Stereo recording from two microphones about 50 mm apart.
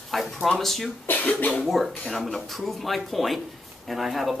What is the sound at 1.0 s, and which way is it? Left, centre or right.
Speech, left.